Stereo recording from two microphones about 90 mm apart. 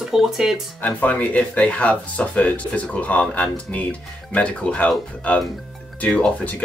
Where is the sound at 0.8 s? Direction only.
15° left (ahead or behind).